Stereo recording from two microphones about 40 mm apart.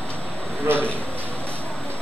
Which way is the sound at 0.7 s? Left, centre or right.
Right.